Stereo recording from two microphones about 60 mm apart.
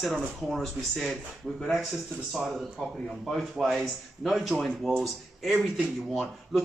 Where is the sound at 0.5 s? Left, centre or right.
Centre.